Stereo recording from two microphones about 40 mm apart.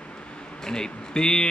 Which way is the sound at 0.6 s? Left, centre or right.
Centre.